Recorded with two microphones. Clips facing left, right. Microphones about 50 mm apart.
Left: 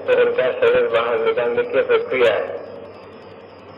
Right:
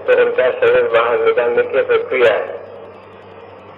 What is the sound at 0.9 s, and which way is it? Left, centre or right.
Speech, right.